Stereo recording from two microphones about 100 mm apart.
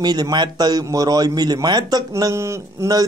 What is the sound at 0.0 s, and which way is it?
A man's voice, 45° right (ahead or behind).